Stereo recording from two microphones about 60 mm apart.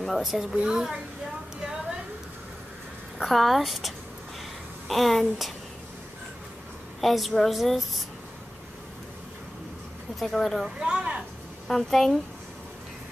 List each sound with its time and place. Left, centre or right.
0.0 s a woman's voice: centre
3.2 s a woman's voice: centre
7.0 s a woman's voice: centre
10.1 s a woman's voice: centre
10.8 s speech: centre
11.6 s a woman's voice: centre